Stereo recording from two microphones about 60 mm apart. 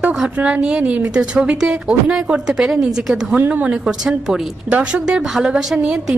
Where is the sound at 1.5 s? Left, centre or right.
Centre.